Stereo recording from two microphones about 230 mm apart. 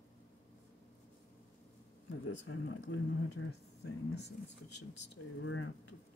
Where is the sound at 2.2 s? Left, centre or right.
Left.